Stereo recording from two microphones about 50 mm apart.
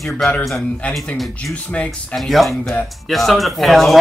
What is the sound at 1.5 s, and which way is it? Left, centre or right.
Speech, left.